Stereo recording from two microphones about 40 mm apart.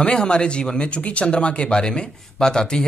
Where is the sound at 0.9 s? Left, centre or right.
Left.